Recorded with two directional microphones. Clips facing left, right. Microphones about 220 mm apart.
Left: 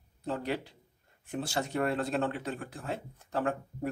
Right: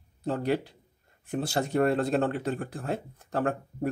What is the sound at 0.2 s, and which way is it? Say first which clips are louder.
A man's voice: right 6 dB; 40° right (ahead or behind).